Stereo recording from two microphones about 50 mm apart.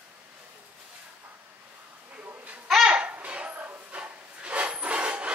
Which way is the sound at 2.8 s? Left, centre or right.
Right.